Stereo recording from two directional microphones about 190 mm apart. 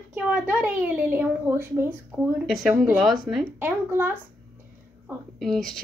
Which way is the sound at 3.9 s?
10° right (ahead or behind).